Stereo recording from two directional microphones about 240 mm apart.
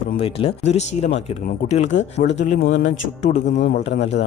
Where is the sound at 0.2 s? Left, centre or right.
Left.